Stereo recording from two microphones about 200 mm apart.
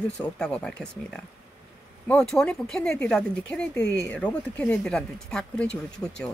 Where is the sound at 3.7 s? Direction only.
60° left (ahead or behind).